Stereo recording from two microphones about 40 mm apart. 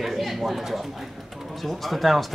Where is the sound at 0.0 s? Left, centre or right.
Centre.